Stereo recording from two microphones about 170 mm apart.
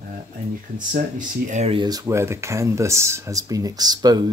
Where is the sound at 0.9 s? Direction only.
50° right (ahead or behind).